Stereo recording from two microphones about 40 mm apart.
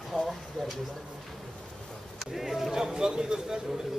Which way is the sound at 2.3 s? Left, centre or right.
Centre.